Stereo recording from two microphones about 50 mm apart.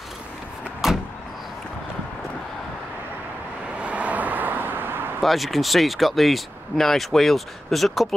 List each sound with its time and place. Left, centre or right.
0.8 s vehicle: centre
3.8 s vehicle: right
5.2 s speech: centre